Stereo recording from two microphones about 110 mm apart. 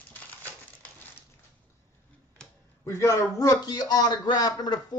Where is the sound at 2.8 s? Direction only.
25° left (ahead or behind).